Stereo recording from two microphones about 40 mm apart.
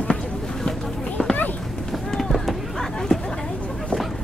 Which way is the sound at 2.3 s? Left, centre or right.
Centre.